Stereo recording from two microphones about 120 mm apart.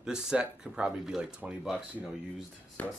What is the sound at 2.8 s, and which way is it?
Speech, 15° left (ahead or behind).